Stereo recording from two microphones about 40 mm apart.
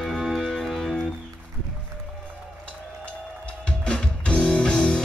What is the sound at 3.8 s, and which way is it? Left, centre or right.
Music, left.